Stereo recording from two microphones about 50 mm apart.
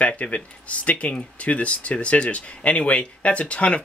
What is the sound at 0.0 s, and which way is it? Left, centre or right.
Speech, left.